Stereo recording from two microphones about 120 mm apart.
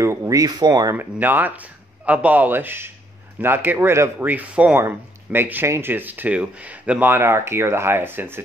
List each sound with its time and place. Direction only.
0.0 s speech: 25° right (ahead or behind)
0.9 s speech: 15° right (ahead or behind)